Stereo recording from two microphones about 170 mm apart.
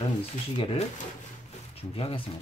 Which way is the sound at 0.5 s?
30° left (ahead or behind).